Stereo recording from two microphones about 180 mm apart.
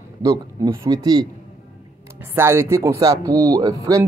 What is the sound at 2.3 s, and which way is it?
Speech, 15° right (ahead or behind).